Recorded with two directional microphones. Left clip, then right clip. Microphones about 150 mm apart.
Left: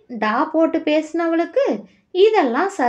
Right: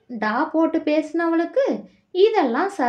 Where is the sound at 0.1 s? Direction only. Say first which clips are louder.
Left 3 dB; 40° left (ahead or behind).